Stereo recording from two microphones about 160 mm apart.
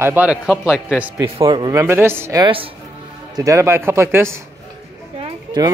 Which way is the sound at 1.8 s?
15° right (ahead or behind).